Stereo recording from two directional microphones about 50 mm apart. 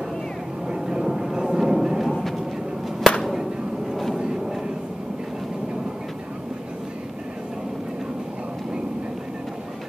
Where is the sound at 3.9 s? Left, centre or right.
Centre.